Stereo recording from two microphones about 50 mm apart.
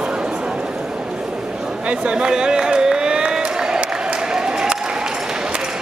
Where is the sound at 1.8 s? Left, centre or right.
Right.